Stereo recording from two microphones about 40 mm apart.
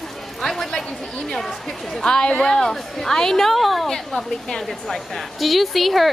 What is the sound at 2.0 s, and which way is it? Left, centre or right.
Speech, left.